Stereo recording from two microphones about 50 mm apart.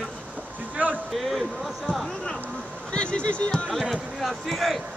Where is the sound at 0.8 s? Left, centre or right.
Right.